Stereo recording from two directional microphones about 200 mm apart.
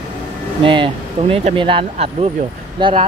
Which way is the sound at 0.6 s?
25° right (ahead or behind).